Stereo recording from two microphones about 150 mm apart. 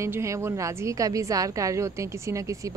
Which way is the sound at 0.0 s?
20° right (ahead or behind).